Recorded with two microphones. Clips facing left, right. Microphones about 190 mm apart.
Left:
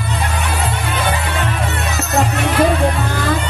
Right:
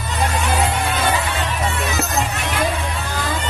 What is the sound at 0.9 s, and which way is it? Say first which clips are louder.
Music: left 1 dB; 65° left (ahead or behind).